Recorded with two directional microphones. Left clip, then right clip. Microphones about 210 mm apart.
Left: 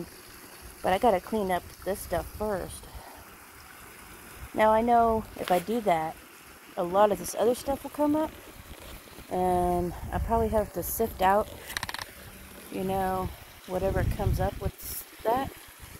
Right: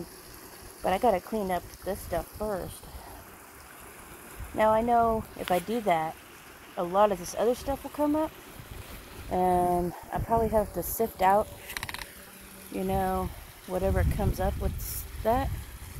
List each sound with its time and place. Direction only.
0.8 s speech: 15° left (ahead or behind)
4.6 s speech: 10° left (ahead or behind)
8.0 s speech: 10° left (ahead or behind)
9.3 s speech: centre (ahead or behind)
12.7 s speech: centre (ahead or behind)